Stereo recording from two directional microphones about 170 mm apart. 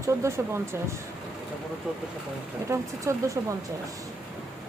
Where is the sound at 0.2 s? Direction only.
15° right (ahead or behind).